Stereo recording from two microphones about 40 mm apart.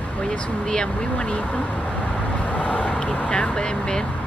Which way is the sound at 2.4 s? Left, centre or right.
Left.